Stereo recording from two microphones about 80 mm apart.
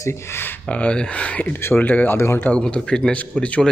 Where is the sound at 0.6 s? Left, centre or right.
Centre; by 2.5 s left.